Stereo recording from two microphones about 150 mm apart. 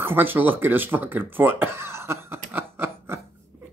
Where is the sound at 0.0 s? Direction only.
15° right (ahead or behind).